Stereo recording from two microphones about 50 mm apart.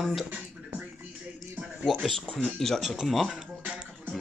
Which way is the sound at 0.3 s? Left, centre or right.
Right.